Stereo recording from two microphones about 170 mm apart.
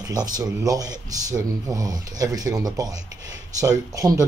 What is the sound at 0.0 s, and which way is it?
Speech, 20° right (ahead or behind).